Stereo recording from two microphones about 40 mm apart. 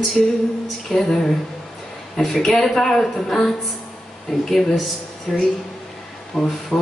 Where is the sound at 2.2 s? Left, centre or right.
Centre.